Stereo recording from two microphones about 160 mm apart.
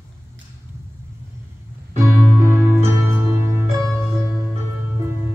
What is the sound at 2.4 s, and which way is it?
Music, 15° right (ahead or behind).